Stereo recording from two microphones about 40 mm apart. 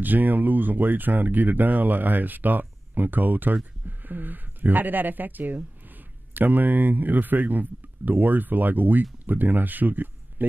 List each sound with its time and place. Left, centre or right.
0.0 s speech: right